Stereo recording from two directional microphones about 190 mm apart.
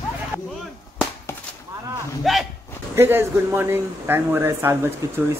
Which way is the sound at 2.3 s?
Centre (ahead or behind).